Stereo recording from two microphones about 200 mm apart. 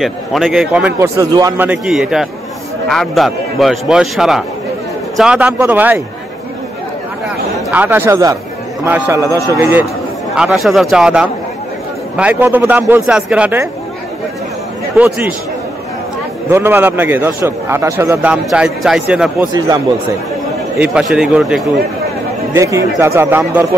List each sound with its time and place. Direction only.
0.0 s a man's voice: centre (ahead or behind)
0.9 s a man's voice: 15° right (ahead or behind)
1.7 s a man's voice: 5° right (ahead or behind)
7.7 s a man's voice: 10° right (ahead or behind)
15.0 s a man's voice: 10° right (ahead or behind)
16.4 s a man's voice: 10° right (ahead or behind)
20.8 s a man's voice: 5° right (ahead or behind)
22.5 s a man's voice: 15° right (ahead or behind)